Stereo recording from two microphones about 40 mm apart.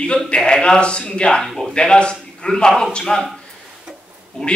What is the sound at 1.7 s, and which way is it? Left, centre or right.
A man's voice, left.